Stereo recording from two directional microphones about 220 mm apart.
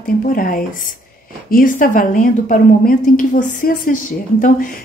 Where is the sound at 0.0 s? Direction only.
40° left (ahead or behind).